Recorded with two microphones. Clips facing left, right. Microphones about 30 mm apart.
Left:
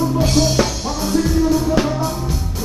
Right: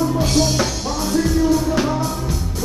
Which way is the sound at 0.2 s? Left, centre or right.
Centre.